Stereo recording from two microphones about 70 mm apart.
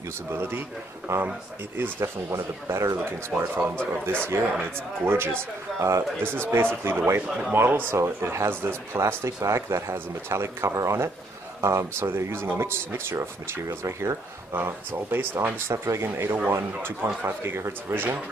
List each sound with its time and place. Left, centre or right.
0.3 s speech: right
5.8 s speech: right
6.2 s speech: right
14.5 s speech: right
15.7 s speech: right